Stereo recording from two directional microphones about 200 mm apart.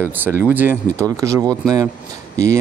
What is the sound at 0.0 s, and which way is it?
Speech, 10° right (ahead or behind).